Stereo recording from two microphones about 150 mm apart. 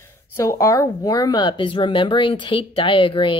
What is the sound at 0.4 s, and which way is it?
Speech, 20° left (ahead or behind).